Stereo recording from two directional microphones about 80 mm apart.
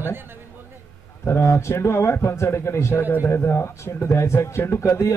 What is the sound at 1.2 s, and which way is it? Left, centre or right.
Speech, left.